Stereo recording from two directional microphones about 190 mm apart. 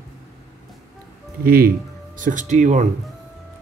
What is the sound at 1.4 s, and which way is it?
Speech, 50° right (ahead or behind).